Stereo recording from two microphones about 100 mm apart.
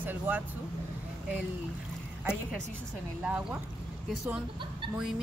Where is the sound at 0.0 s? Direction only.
20° right (ahead or behind).